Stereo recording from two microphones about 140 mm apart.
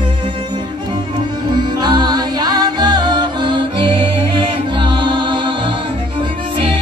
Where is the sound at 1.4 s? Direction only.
30° right (ahead or behind).